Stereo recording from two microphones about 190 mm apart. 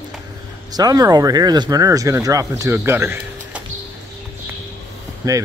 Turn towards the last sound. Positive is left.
turn(degrees=-20)  # may be behind; listen again after turning